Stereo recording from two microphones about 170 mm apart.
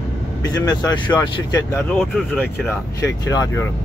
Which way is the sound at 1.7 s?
10° left (ahead or behind).